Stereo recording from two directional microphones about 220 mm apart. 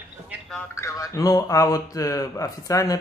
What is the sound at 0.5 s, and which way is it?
Speech, 15° left (ahead or behind).